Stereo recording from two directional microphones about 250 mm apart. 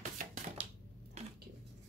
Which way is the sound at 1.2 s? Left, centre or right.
Right.